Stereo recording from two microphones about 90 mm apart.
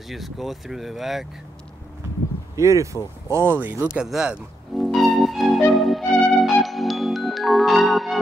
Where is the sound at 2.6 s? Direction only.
35° right (ahead or behind).